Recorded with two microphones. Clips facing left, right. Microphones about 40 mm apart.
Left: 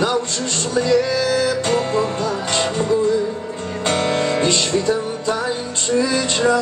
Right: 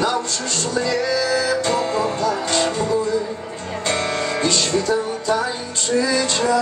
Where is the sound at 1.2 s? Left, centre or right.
Left.